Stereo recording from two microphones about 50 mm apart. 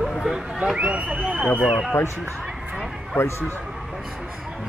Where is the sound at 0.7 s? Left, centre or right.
Right.